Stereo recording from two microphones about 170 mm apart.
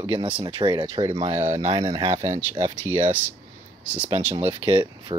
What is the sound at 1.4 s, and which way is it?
Speech, 40° right (ahead or behind).